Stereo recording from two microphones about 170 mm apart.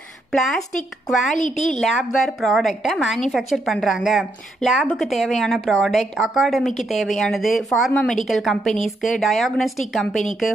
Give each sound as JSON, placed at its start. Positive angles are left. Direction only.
{"t": 0.3, "sound": "a woman's voice", "side_deg": 0}
{"t": 1.3, "sound": "a woman's voice", "side_deg": 45}
{"t": 1.8, "sound": "a woman's voice", "side_deg": 0}